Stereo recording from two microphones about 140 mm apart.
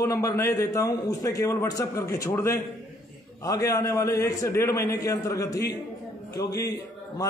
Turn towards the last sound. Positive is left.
turn(degrees=25)  # may be behind; listen again after turning